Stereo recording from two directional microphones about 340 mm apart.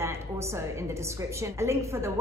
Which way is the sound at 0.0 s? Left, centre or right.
Centre.